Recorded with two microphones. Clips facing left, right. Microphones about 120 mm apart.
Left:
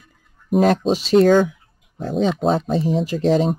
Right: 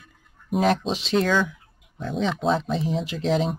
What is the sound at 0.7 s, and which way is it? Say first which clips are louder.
Speech: left 5 dB; 40° left (ahead or behind).